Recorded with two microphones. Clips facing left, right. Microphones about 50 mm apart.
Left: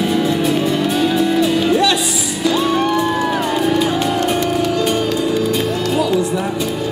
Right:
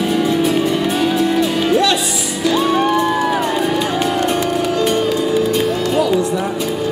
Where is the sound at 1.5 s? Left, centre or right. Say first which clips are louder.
Even; centre.